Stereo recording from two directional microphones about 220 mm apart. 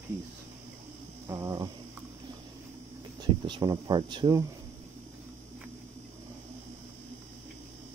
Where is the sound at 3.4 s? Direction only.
20° right (ahead or behind).